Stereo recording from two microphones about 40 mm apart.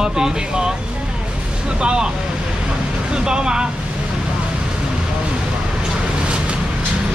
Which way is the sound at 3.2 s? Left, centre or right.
Right.